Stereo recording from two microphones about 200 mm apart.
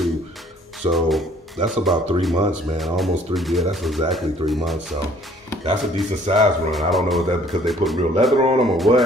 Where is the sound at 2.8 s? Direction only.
Centre (ahead or behind).